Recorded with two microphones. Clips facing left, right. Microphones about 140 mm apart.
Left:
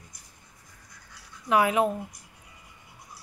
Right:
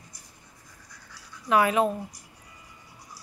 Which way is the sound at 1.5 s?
15° left (ahead or behind).